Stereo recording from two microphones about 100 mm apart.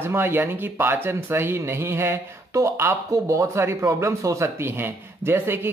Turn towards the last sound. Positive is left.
turn(degrees=-20)  # may be behind; listen again after turning